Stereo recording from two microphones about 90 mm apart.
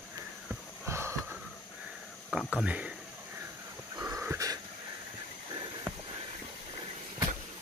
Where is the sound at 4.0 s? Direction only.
30° right (ahead or behind).